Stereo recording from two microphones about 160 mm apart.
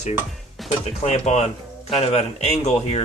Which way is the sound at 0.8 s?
45° left (ahead or behind).